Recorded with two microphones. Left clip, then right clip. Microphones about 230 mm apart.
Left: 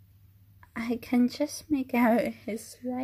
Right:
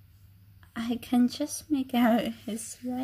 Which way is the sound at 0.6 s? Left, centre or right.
Centre.